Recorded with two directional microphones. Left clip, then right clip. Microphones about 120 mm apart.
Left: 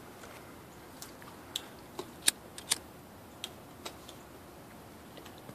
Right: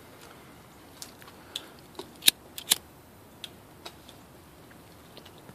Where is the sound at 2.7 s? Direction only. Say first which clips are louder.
Right 7 dB; 50° right (ahead or behind).